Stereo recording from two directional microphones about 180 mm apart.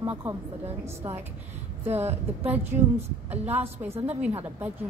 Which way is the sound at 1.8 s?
35° right (ahead or behind).